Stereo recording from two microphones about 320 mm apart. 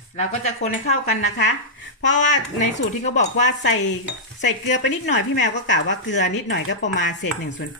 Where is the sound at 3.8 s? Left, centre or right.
Left.